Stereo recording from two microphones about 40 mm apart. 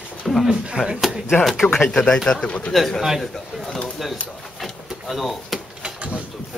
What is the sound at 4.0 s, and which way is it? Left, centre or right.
Speech, centre.